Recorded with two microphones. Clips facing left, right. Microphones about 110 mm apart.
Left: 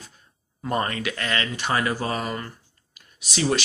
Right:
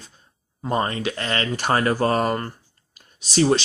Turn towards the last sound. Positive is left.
turn(degrees=-25)  # may be behind; listen again after turning